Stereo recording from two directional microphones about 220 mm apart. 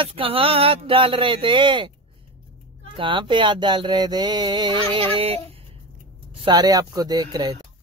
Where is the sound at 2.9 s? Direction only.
20° right (ahead or behind).